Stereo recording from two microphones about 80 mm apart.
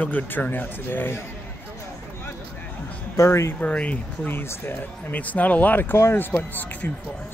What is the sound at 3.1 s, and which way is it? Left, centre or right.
Speech, left.